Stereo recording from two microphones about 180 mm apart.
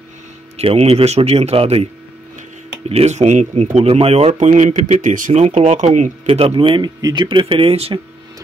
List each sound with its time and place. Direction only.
0.6 s speech: 35° right (ahead or behind)
2.9 s speech: 35° right (ahead or behind)